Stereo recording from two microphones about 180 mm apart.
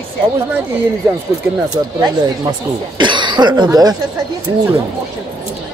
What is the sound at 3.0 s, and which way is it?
Speech, 25° right (ahead or behind).